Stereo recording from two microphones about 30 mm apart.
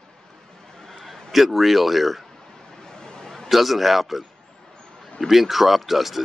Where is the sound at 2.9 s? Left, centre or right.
Left.